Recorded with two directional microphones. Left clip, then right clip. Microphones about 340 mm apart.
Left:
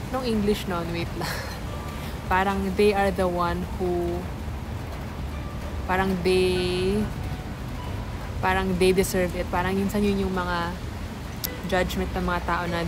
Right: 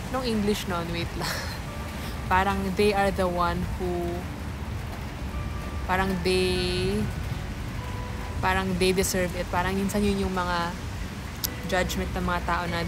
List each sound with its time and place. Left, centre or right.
0.1 s a woman's voice: centre
5.9 s speech: centre
8.4 s a woman's voice: centre